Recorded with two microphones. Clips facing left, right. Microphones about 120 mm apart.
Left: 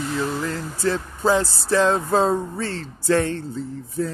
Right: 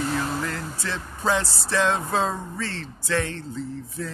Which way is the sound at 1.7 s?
35° left (ahead or behind).